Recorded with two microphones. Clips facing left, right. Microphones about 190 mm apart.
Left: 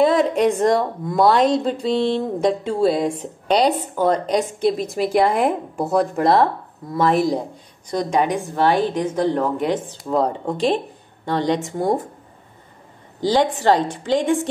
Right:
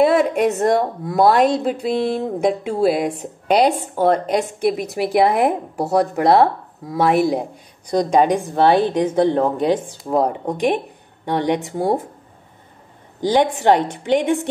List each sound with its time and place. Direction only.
0.0 s a woman's voice: 10° right (ahead or behind)
7.9 s a woman's voice: 20° right (ahead or behind)
13.2 s a woman's voice: 20° right (ahead or behind)